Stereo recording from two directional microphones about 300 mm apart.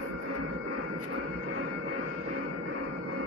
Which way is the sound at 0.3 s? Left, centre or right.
Right.